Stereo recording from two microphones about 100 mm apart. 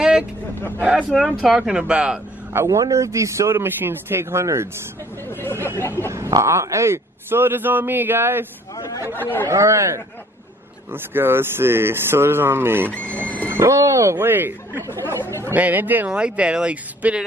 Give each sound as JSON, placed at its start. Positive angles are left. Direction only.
{"t": 0.0, "sound": "vehicle", "side_deg": -10}
{"t": 1.1, "sound": "speech", "side_deg": 5}
{"t": 1.5, "sound": "speech", "side_deg": -10}
{"t": 2.5, "sound": "a man's voice", "side_deg": -30}
{"t": 5.3, "sound": "speech", "side_deg": 20}
{"t": 6.0, "sound": "a man's voice", "side_deg": -30}
{"t": 8.7, "sound": "speech", "side_deg": 40}
{"t": 9.1, "sound": "speech", "side_deg": 20}
{"t": 9.5, "sound": "a man's voice", "side_deg": -30}
{"t": 12.9, "sound": "speech", "side_deg": 15}
{"t": 13.5, "sound": "a man's voice", "side_deg": -30}
{"t": 14.1, "sound": "a man's voice", "side_deg": -20}